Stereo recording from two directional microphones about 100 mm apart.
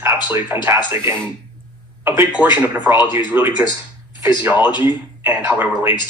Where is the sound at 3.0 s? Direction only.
45° left (ahead or behind).